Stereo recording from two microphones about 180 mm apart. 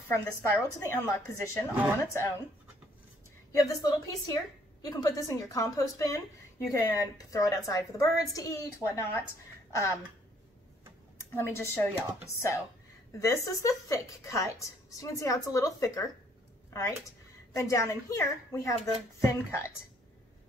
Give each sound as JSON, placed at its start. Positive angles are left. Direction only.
{"t": 0.1, "sound": "a woman's voice", "side_deg": 15}
{"t": 3.5, "sound": "a woman's voice", "side_deg": 20}
{"t": 9.7, "sound": "a sound", "side_deg": 15}
{"t": 11.3, "sound": "a woman's voice", "side_deg": 15}